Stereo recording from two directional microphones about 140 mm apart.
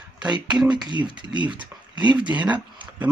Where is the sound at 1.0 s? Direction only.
35° right (ahead or behind).